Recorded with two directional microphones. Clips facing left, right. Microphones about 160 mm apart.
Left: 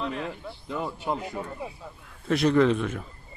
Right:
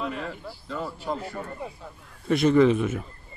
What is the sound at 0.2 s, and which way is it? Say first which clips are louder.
Speech: left 1 dB; 15° left (ahead or behind).